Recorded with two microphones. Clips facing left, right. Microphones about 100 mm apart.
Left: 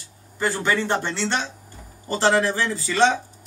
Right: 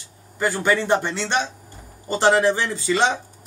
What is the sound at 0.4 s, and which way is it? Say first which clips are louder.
A man's voice: right 2 dB; 15° right (ahead or behind).